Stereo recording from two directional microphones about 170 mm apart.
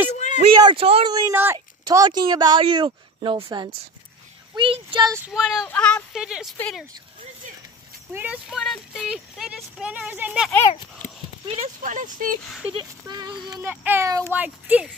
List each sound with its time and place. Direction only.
0.1 s a sound: 45° left (ahead or behind)
0.6 s speech: 30° right (ahead or behind)
1.1 s speech: 15° right (ahead or behind)
5.3 s speech: centre (ahead or behind)
6.1 s speech: 5° right (ahead or behind)
8.1 s speech: 10° right (ahead or behind)
11.0 s clip-clop: 50° left (ahead or behind)
11.4 s speech: 45° right (ahead or behind)
12.6 s a child's voice: 25° right (ahead or behind); by 14.9 s 10° right (ahead or behind)